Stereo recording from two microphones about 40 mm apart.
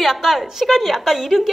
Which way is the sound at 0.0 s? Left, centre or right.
Centre.